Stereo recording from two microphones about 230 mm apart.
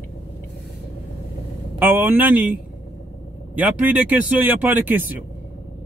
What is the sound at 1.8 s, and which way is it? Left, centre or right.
Speech, centre.